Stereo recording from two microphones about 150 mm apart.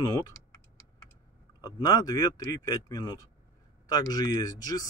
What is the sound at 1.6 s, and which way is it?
Speech, 25° left (ahead or behind).